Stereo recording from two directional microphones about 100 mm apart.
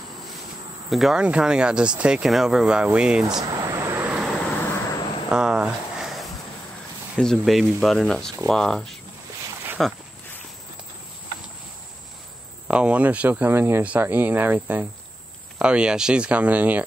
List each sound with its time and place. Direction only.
0.8 s speech: centre (ahead or behind)
3.4 s vehicle: 35° right (ahead or behind)
4.3 s vehicle: 5° left (ahead or behind)
4.6 s vehicle: 20° left (ahead or behind)
5.3 s a sound: 10° right (ahead or behind)
7.2 s speech: 5° left (ahead or behind)
12.6 s speech: 10° right (ahead or behind)